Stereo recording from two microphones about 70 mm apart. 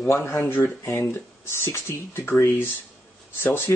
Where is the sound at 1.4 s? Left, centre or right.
Left.